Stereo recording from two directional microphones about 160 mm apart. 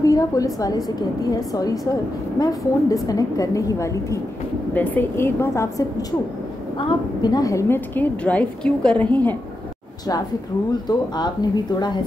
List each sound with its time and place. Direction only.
0.0 s a woman's voice: 20° left (ahead or behind)
6.8 s a woman's voice: 30° left (ahead or behind); by 9.4 s 10° left (ahead or behind)
10.9 s a woman's voice: 25° left (ahead or behind)